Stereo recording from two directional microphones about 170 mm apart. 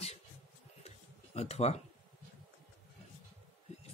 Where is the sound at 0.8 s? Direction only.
40° left (ahead or behind).